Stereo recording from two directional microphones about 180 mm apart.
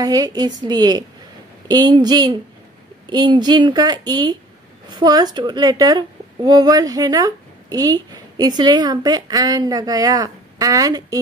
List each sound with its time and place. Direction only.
0.0 s a woman's voice: 20° right (ahead or behind)